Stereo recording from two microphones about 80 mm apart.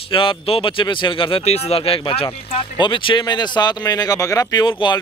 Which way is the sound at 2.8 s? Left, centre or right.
Left.